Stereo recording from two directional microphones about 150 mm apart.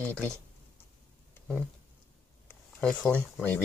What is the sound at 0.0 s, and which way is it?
Speech, 10° left (ahead or behind).